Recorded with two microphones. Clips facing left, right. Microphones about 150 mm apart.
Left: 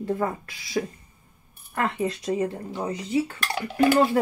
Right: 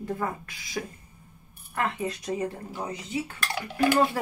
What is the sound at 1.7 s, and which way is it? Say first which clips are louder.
Speech: left 3 dB; 30° left (ahead or behind).